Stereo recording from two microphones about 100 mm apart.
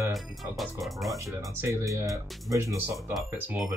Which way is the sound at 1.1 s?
30° right (ahead or behind).